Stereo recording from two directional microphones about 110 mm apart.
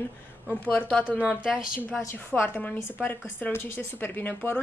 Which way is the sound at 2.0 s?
20° left (ahead or behind).